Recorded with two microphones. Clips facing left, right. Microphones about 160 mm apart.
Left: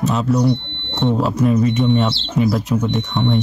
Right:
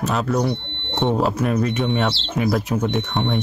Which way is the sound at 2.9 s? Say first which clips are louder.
Left 2 dB; 10° right (ahead or behind).